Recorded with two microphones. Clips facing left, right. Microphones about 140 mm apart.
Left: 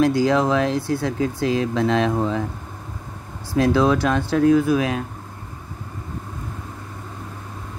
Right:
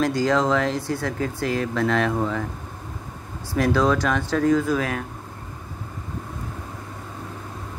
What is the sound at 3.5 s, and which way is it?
Speech, 15° left (ahead or behind).